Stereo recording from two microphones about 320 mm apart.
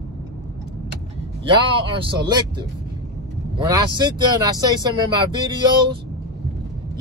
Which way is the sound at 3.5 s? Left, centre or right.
Centre.